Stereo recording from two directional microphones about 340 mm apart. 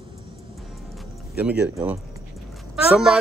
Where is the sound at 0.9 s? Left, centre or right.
Centre.